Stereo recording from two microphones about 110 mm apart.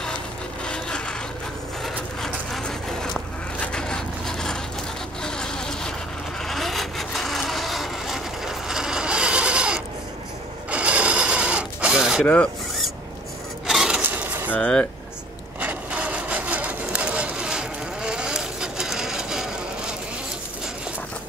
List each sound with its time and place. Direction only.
0.7 s wood: 5° left (ahead or behind)
1.8 s a sound: 5° left (ahead or behind)
3.5 s wood: 10° left (ahead or behind)
5.2 s vehicle: 5° left (ahead or behind); by 9.8 s 10° right (ahead or behind)
10.7 s sewing machine: 10° right (ahead or behind)
12.2 s rub: 15° left (ahead or behind)
13.7 s a sound: 5° right (ahead or behind)
14.5 s speech: 10° left (ahead or behind)
15.6 s printer: 10° right (ahead or behind)